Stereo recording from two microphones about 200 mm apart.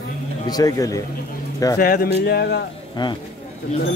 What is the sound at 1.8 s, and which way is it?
Speech, 50° left (ahead or behind).